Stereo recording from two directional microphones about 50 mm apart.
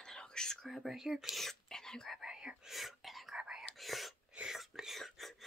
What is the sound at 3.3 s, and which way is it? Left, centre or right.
Whispering, centre.